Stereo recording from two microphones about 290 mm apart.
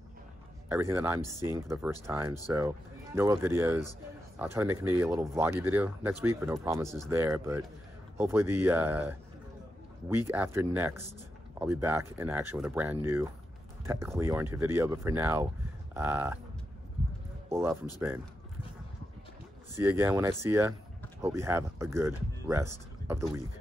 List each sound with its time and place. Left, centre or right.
0.7 s speech: centre
15.9 s livestock: centre
17.5 s speech: centre
19.7 s speech: centre